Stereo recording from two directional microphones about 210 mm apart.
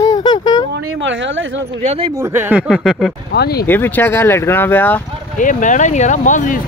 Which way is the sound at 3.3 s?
50° left (ahead or behind).